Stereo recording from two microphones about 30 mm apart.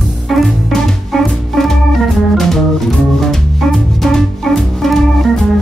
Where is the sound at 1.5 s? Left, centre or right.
Centre.